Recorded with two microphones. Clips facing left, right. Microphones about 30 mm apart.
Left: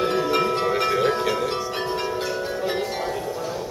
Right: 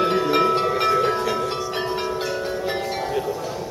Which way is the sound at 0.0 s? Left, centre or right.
Centre.